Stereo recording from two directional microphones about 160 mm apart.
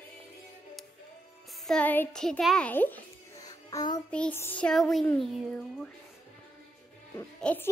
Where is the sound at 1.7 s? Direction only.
10° left (ahead or behind).